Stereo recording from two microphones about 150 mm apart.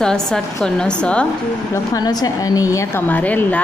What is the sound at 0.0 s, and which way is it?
Speech, 5° left (ahead or behind).